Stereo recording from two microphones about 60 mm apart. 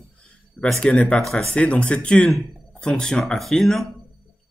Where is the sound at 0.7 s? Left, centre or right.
Centre.